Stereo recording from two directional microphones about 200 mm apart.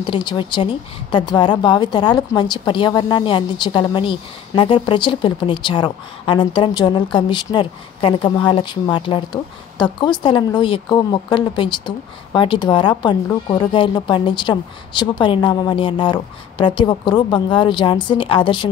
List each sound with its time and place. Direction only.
0.0 s a woman's voice: 25° left (ahead or behind)